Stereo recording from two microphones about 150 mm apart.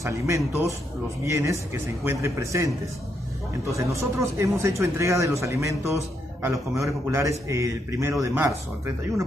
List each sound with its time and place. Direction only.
0.0 s a man's voice: 20° right (ahead or behind)